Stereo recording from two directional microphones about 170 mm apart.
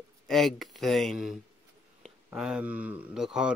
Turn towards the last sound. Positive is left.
turn(degrees=-5)  # may be behind; listen again after turning